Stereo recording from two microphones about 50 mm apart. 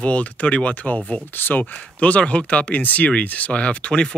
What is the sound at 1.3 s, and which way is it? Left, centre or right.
Speech, left.